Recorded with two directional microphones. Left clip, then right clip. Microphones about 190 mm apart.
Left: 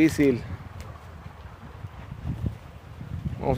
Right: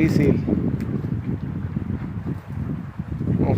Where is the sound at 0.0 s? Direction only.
15° left (ahead or behind).